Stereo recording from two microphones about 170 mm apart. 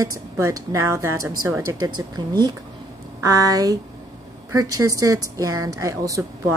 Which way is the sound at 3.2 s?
20° right (ahead or behind).